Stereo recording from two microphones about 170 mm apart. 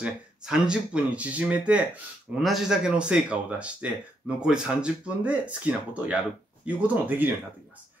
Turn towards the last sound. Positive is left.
turn(degrees=-10)  # may be behind; listen again after turning